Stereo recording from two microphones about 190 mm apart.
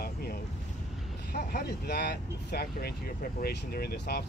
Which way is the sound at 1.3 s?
55° left (ahead or behind).